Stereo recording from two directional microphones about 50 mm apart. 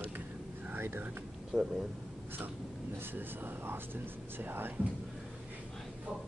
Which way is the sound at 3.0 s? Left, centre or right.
Right.